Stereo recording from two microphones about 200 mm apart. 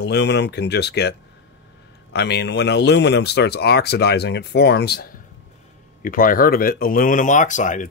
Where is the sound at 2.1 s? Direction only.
55° left (ahead or behind); by 7.9 s 40° left (ahead or behind).